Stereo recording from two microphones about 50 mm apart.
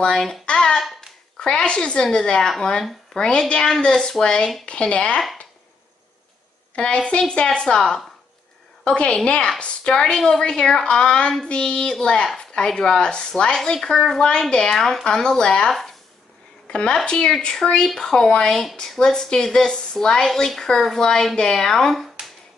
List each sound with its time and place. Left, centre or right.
0.1 s speech: centre
0.5 s hands: centre
1.4 s a woman's voice: centre
6.7 s a woman's voice: left